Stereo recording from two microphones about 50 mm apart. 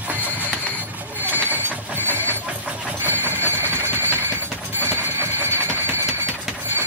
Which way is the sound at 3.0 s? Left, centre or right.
Right.